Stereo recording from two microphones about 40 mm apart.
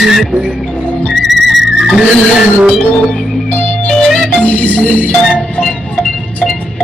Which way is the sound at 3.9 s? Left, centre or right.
Centre.